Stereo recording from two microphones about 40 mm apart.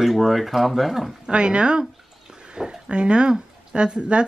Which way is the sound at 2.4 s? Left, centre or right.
Centre.